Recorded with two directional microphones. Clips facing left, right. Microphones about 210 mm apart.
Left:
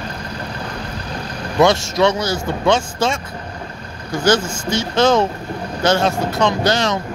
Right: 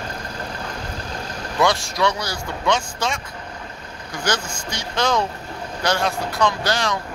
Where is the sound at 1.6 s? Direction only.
25° left (ahead or behind).